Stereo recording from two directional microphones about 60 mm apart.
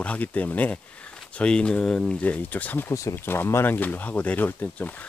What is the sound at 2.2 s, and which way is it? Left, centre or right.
Speech, left.